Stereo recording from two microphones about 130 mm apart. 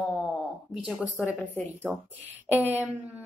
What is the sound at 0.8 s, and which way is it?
Speech, 5° right (ahead or behind).